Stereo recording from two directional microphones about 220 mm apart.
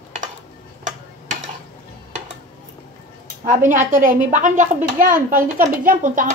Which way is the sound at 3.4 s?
35° right (ahead or behind).